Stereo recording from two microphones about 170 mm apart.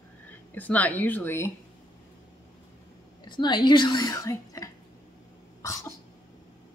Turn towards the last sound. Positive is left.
turn(degrees=20)  # may be behind; listen again after turning